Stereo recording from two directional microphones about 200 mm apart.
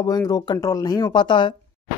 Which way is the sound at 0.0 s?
20° left (ahead or behind).